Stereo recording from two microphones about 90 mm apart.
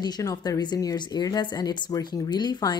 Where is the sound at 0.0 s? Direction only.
45° left (ahead or behind).